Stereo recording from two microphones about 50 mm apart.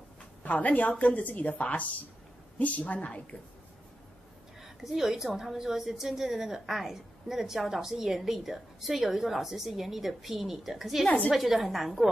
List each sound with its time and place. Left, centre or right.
0.4 s a woman's voice: left
4.6 s a woman's voice: centre